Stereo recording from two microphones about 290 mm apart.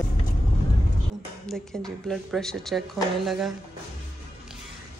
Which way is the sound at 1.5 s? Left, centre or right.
Centre.